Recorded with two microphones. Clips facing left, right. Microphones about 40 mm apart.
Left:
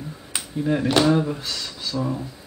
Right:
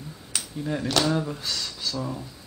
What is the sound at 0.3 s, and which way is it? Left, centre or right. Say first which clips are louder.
Speech: left 6 dB; left.